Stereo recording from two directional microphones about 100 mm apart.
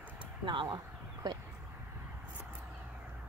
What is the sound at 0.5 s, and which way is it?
Speech, 50° right (ahead or behind).